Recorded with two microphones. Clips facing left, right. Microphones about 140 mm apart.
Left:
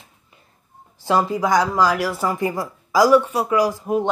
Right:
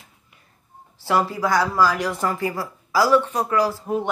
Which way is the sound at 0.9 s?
15° left (ahead or behind).